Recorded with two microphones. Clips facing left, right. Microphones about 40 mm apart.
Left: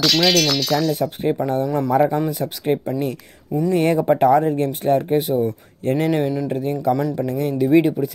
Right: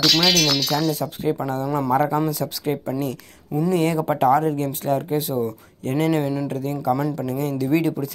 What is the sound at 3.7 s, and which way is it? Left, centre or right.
Speech, left.